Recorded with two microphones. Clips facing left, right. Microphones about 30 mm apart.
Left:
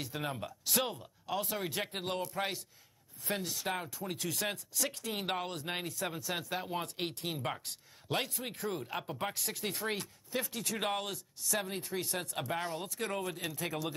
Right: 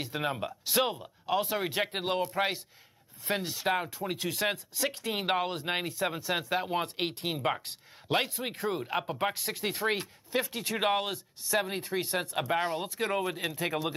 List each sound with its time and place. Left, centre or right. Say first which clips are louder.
0.0 s speech: right 6 dB; right